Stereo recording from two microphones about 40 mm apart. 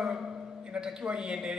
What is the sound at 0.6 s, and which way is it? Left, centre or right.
Speech, right.